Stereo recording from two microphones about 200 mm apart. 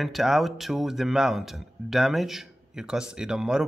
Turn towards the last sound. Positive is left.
turn(degrees=-5)  # may be behind; listen again after turning